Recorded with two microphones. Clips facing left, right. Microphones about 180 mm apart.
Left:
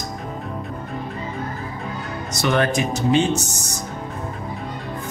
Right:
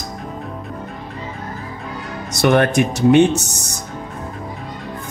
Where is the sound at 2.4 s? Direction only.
60° right (ahead or behind).